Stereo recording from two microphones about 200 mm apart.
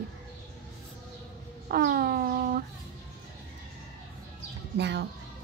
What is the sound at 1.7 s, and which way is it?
Speech, 50° right (ahead or behind).